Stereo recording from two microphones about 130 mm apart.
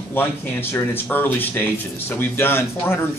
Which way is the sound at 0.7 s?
15° left (ahead or behind).